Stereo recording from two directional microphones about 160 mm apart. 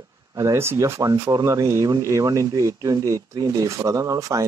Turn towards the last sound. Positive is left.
turn(degrees=-20)  # may be behind; listen again after turning